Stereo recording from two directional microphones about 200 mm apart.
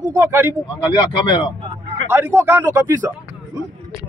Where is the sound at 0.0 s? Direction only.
10° right (ahead or behind).